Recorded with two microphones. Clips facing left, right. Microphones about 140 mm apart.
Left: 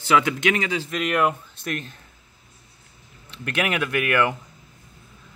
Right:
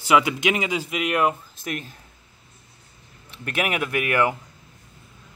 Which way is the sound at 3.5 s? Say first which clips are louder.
Left 1 dB; 10° right (ahead or behind).